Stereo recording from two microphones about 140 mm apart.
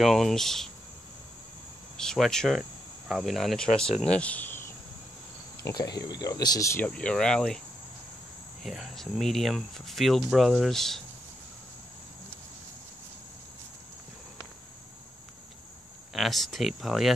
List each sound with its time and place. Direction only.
0.0 s speech: centre (ahead or behind)
2.0 s speech: 5° left (ahead or behind)
5.6 s speech: 25° left (ahead or behind)
6.9 s speech: 5° left (ahead or behind)
8.6 s speech: centre (ahead or behind)
16.1 s speech: centre (ahead or behind)